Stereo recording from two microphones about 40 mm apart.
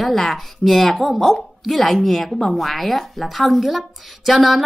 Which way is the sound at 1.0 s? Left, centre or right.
Centre.